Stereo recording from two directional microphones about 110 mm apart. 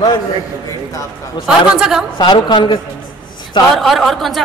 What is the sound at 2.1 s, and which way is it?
Speech, 45° left (ahead or behind).